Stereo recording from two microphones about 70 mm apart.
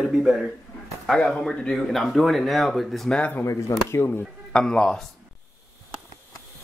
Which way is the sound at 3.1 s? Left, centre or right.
Centre.